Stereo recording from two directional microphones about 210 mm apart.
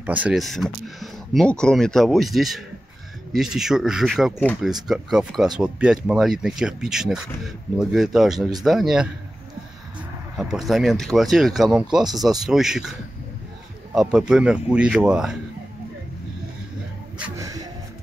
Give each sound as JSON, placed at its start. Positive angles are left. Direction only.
{"t": 0.0, "sound": "speech", "side_deg": -5}
{"t": 10.3, "sound": "speech", "side_deg": 0}
{"t": 13.9, "sound": "speech", "side_deg": -5}
{"t": 17.2, "sound": "music", "side_deg": -15}